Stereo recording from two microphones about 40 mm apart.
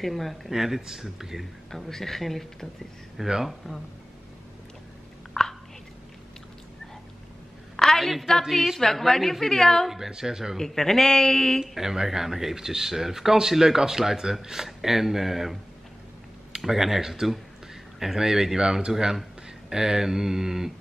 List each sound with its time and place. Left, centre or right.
0.0 s speech: centre
1.7 s a woman's voice: centre
5.4 s chewing: left
7.7 s a sound: centre
8.1 s a woman's voice: centre
9.8 s speech: centre
10.6 s a woman's voice: centre
11.6 s speech: centre
16.5 s speech: centre